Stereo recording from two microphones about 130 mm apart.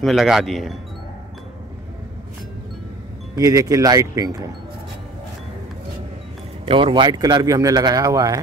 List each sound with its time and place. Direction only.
0.0 s speech: centre (ahead or behind)
3.3 s speech: 25° right (ahead or behind)
6.6 s speech: 40° right (ahead or behind)